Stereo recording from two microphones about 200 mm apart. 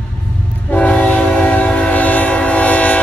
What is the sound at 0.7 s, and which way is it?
Train, 5° left (ahead or behind).